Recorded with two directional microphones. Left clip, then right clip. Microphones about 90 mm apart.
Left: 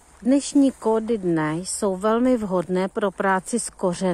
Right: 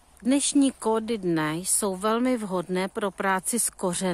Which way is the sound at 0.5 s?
90° right.